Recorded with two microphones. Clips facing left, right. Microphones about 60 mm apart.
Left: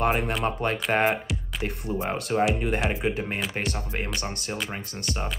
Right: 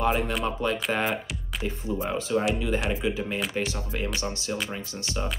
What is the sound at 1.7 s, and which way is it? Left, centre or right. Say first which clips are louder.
Speech: right 1 dB; left.